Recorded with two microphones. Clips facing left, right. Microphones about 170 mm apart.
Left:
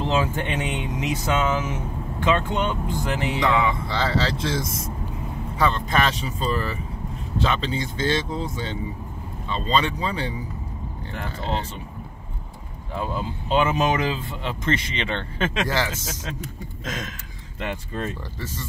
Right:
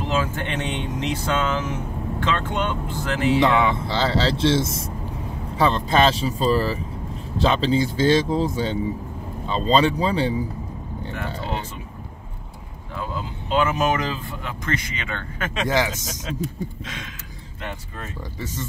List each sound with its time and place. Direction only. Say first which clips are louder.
0.0 s speech: left 1 dB; 20° left (ahead or behind)
3.3 s speech: right 2 dB; 25° right (ahead or behind)
12.9 s speech: left 2 dB; 20° left (ahead or behind)
15.7 s speech: right 3 dB; 15° right (ahead or behind)
16.8 s a sound: left 4 dB; 45° left (ahead or behind)